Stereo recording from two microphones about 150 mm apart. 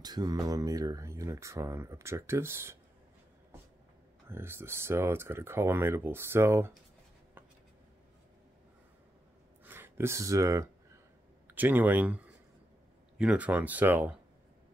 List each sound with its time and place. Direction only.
0.0 s speech: 25° right (ahead or behind)
4.3 s speech: 15° right (ahead or behind)
9.7 s speech: 15° right (ahead or behind)
13.2 s speech: 10° right (ahead or behind)